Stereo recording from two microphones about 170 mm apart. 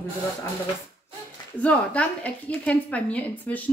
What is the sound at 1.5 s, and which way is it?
A woman's voice, 10° left (ahead or behind).